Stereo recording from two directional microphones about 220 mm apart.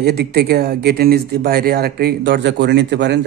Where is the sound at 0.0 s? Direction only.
45° right (ahead or behind).